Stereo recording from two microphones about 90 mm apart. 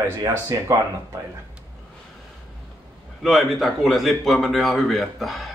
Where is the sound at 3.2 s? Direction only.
Centre (ahead or behind).